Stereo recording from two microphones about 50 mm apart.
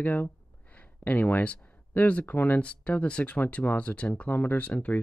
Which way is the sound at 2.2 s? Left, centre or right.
Left.